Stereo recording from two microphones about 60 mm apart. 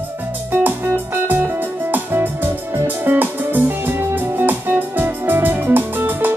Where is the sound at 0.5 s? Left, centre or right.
Right.